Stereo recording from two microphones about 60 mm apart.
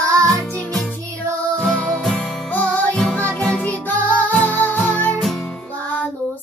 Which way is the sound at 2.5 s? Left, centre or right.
Left.